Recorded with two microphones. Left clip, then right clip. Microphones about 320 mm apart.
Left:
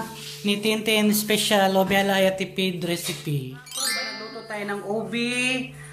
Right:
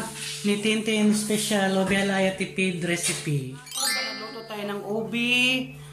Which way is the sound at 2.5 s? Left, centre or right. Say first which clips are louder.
Even; centre.